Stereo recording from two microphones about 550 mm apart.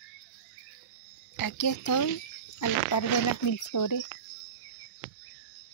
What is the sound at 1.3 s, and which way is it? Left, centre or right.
Speech, left.